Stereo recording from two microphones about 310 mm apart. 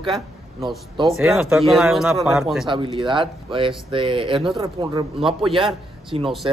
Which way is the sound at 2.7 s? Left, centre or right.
Centre.